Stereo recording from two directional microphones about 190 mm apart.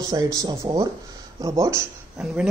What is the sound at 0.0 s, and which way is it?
Speech, 20° right (ahead or behind).